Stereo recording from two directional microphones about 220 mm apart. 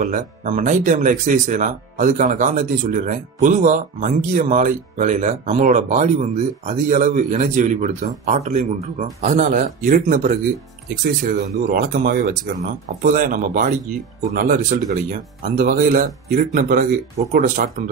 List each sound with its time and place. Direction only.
0.0 s speech: 35° right (ahead or behind)